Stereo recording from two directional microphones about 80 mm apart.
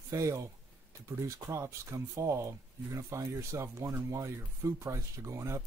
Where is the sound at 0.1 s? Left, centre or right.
Right.